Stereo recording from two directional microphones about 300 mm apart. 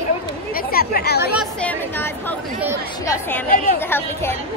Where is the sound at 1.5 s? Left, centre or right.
Centre.